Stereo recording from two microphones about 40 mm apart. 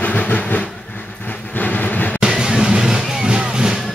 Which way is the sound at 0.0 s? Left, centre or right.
Left.